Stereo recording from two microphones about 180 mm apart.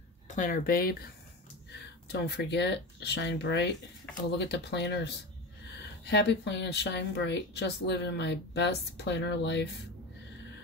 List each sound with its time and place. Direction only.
0.3 s speech: 45° left (ahead or behind)
2.1 s speech: 75° left (ahead or behind)